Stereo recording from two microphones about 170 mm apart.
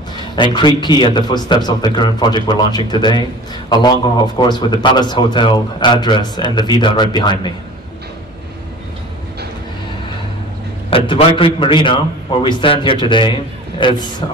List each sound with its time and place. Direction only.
0.4 s a man's voice: 25° left (ahead or behind)
10.9 s a man's voice: 30° left (ahead or behind)